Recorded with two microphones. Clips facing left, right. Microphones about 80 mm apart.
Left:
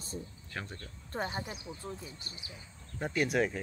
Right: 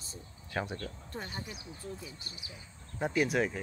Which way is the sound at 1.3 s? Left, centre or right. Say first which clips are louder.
Left 4 dB; left.